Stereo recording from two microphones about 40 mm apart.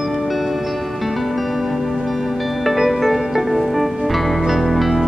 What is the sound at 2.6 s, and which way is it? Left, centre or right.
Music, centre.